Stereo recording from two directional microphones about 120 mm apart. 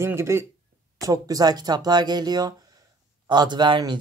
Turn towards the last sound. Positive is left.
turn(degrees=-40)  # may be behind; listen again after turning